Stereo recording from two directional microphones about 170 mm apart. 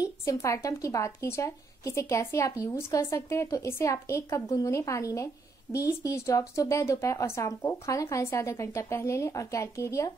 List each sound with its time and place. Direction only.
0.0 s a woman's voice: 20° left (ahead or behind)